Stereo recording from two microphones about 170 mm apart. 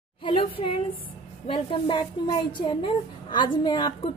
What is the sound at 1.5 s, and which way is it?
A woman's voice, 30° left (ahead or behind).